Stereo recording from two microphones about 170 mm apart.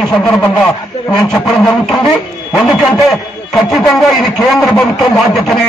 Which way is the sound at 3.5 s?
Centre (ahead or behind).